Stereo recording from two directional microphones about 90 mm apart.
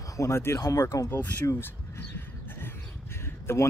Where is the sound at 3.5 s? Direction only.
30° left (ahead or behind).